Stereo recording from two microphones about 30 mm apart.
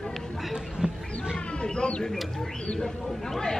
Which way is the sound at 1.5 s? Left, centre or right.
Left.